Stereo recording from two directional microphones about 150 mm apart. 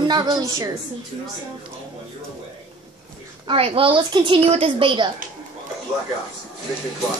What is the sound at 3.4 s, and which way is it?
A woman's voice, 40° right (ahead or behind).